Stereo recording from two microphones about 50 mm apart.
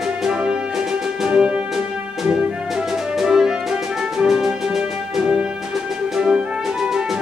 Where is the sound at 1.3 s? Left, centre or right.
Right.